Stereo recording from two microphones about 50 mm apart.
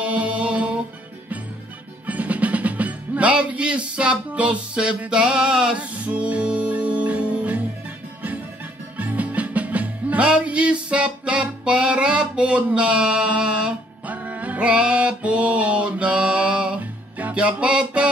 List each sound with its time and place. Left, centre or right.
0.0 s music: right
2.0 s music: right
5.8 s music: right
8.9 s music: right
10.2 s music: centre
14.6 s music: right